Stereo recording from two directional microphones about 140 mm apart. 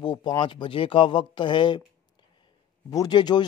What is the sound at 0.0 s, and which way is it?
A man's voice, 30° left (ahead or behind).